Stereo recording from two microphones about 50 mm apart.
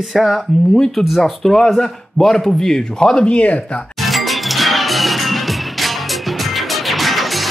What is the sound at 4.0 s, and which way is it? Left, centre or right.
Music, centre.